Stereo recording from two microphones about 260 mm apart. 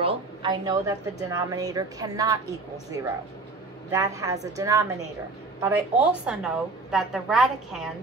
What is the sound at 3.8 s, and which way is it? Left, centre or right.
A woman's voice, centre.